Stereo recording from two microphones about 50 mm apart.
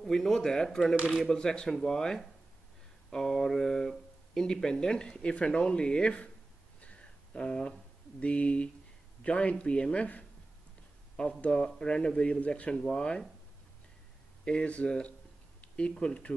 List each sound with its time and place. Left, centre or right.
0.0 s speech: centre; by 6.3 s left
6.8 s a sound: left
8.2 s speech: left
11.4 s speech: left
14.4 s speech: left